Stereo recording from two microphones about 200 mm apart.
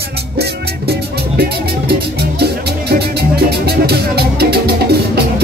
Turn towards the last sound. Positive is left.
turn(degrees=-50)  # may be behind; listen again after turning